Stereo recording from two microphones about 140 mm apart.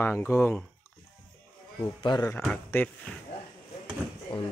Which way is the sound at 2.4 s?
10° left (ahead or behind).